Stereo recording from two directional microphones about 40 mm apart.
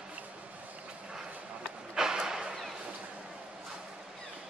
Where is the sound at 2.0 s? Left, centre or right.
Centre.